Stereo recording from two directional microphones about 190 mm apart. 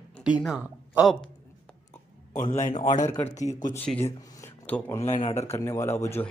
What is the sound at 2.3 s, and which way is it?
Speech, 40° left (ahead or behind).